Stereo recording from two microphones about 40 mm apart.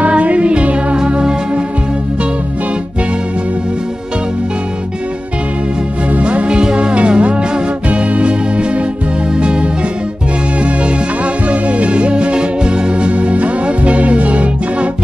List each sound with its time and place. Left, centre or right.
0.0 s music: right
0.9 s music: right
6.1 s music: right
11.4 s music: right
13.1 s music: right